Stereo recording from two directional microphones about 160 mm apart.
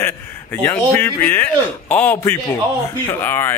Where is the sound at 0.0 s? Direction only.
15° left (ahead or behind).